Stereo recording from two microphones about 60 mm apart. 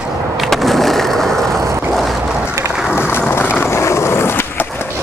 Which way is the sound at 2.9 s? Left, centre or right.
Left.